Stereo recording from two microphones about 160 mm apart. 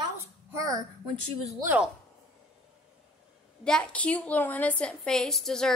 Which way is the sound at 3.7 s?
5° left (ahead or behind).